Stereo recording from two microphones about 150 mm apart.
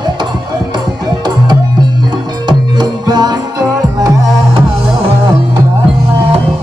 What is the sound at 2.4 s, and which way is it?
Music, 30° right (ahead or behind).